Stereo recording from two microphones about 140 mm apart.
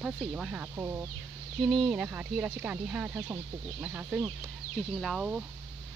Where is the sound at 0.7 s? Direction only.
20° right (ahead or behind).